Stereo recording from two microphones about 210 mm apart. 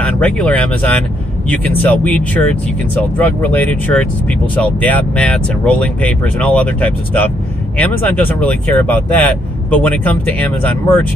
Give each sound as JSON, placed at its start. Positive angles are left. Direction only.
{"t": 0.0, "sound": "speech", "side_deg": 5}